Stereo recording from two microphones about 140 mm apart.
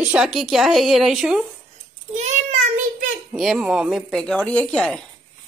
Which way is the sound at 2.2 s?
60° right (ahead or behind).